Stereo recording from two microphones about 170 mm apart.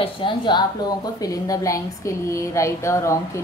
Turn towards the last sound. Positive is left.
turn(degrees=15)  # may be behind; listen again after turning